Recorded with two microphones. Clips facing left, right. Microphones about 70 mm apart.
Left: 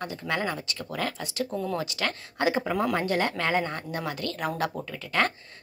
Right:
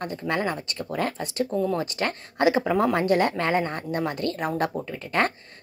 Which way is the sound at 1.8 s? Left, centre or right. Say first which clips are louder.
Right 3 dB; right.